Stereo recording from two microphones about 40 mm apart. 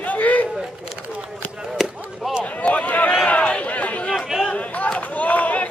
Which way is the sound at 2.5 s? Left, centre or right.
Left.